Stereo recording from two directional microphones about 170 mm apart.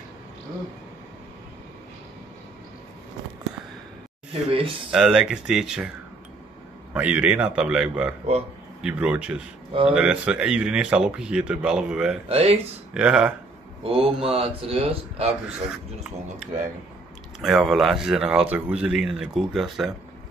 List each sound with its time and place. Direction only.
4.3 s speech: 35° right (ahead or behind)
4.9 s speech: 5° right (ahead or behind)
6.9 s a man's voice: 5° right (ahead or behind)
12.3 s speech: 35° right (ahead or behind)
12.9 s a man's voice: 5° right (ahead or behind)
13.8 s speech: 35° right (ahead or behind)
17.4 s speech: centre (ahead or behind)